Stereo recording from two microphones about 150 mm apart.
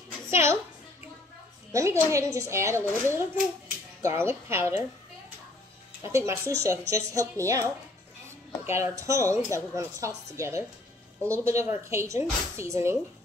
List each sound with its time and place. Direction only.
0.3 s a woman's voice: 15° right (ahead or behind)
1.7 s a woman's voice: 20° right (ahead or behind)
6.0 s a woman's voice: 20° right (ahead or behind)
8.6 s a woman's voice: 20° right (ahead or behind)